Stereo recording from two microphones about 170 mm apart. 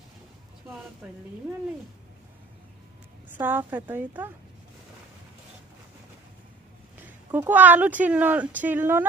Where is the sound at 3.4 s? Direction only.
10° right (ahead or behind).